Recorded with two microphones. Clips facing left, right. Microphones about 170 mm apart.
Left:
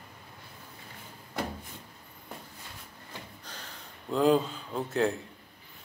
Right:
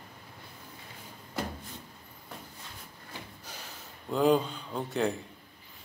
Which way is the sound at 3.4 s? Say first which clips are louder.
Even; 10° right (ahead or behind).